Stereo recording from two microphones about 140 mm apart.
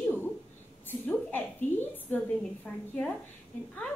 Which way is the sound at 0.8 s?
15° left (ahead or behind).